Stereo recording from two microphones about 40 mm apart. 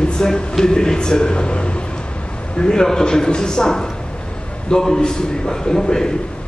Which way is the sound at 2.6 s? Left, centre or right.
Centre.